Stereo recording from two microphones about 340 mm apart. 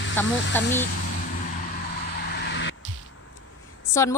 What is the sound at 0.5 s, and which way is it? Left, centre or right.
Speech, centre.